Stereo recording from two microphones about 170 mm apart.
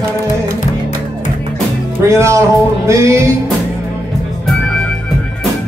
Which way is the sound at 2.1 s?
20° right (ahead or behind).